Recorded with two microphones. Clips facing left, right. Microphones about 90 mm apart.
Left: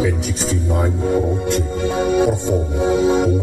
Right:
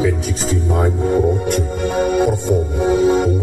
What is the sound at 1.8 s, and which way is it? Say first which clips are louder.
Music: even; 5° right (ahead or behind).